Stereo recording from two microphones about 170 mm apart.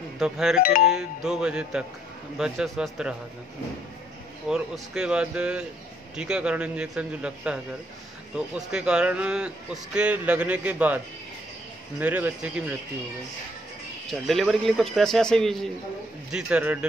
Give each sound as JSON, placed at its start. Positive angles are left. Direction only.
{"t": 0.2, "sound": "speech", "side_deg": -5}
{"t": 0.6, "sound": "speech", "side_deg": 60}
{"t": 0.8, "sound": "speech", "side_deg": -5}
{"t": 4.5, "sound": "speech", "side_deg": -5}
{"t": 12.0, "sound": "speech", "side_deg": -10}
{"t": 14.0, "sound": "speech", "side_deg": 0}